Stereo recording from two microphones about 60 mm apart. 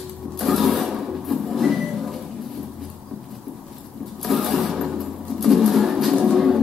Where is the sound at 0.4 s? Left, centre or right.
Centre.